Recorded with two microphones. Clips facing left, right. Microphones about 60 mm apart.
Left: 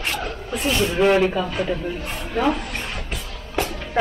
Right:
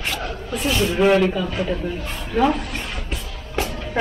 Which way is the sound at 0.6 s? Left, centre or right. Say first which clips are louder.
Even; centre.